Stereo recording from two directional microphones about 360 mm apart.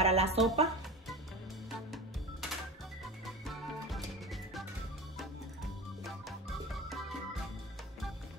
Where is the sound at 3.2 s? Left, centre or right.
Centre.